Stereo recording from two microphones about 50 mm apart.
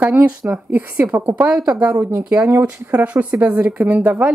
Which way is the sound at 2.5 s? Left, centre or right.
Right.